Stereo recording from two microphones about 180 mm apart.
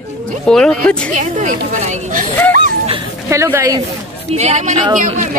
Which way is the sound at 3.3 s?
15° right (ahead or behind).